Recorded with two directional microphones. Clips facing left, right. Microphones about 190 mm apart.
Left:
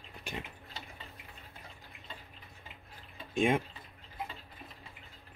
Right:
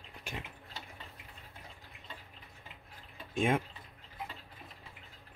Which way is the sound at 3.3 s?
5° right (ahead or behind).